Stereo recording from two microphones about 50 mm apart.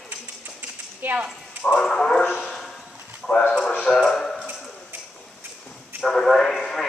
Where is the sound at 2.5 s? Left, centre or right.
Centre.